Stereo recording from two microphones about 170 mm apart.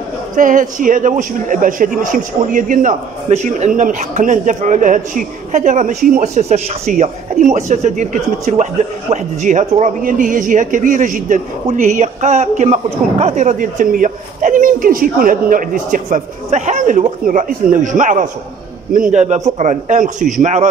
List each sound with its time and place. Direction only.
0.4 s a man's voice: 50° right (ahead or behind)